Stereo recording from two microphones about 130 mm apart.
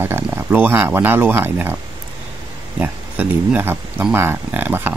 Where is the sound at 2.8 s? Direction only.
10° right (ahead or behind).